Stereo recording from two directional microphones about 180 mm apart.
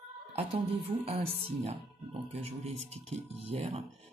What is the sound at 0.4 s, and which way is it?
Speech, 35° right (ahead or behind).